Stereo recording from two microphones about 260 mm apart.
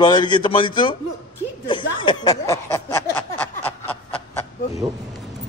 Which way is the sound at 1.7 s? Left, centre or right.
Centre.